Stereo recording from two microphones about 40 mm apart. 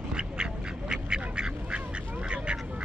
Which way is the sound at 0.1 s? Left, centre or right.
Right.